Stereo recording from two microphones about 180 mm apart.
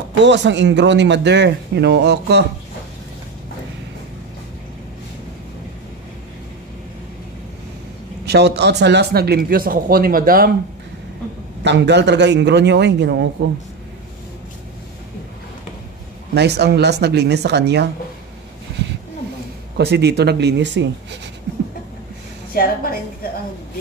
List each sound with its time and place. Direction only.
0.2 s speech: 80° right
8.3 s speech: 65° right (ahead or behind)
11.6 s speech: 75° right (ahead or behind)
16.3 s speech: 65° right (ahead or behind)
19.8 s speech: 65° right (ahead or behind)
22.5 s a woman's voice: 55° left (ahead or behind)